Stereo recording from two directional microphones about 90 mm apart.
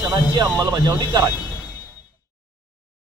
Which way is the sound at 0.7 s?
45° right (ahead or behind).